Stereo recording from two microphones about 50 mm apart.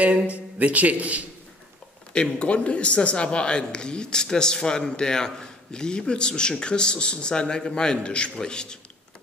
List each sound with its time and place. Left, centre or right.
0.0 s speech: right
2.1 s a man's voice: left